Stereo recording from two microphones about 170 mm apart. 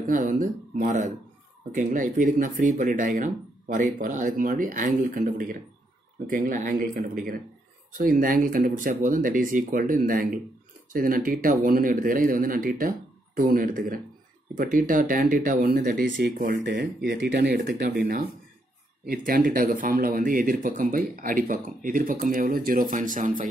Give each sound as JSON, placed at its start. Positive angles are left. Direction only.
{"t": 0.0, "sound": "speech", "side_deg": -50}
{"t": 16.8, "sound": "speech", "side_deg": -90}
{"t": 19.0, "sound": "speech", "side_deg": -55}